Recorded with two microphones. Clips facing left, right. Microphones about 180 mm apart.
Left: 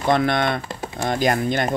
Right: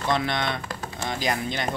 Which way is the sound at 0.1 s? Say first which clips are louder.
Left 7 dB; 50° left (ahead or behind).